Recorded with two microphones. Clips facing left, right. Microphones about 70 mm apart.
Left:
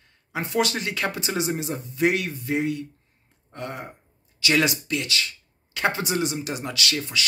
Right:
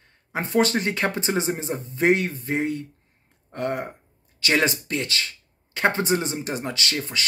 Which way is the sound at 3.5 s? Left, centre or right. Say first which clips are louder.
Right 7 dB; right.